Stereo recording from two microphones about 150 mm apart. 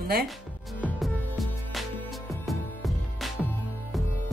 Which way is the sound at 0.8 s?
Centre (ahead or behind).